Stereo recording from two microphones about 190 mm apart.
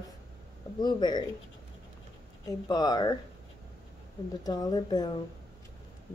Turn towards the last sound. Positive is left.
turn(degrees=20)  # may be behind; listen again after turning